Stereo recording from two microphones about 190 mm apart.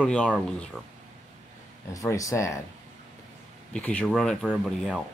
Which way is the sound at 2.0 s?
15° left (ahead or behind).